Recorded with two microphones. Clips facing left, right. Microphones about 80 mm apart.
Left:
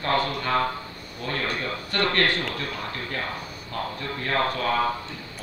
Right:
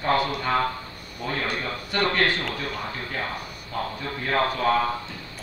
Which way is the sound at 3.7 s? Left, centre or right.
Centre.